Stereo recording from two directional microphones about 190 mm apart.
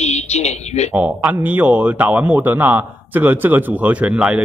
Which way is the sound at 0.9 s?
5° right (ahead or behind).